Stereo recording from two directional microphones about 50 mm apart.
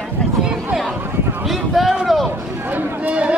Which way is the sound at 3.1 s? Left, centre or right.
Right.